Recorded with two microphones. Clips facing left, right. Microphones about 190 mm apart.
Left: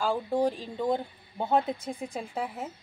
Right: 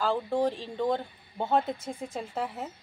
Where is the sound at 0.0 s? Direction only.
15° left (ahead or behind).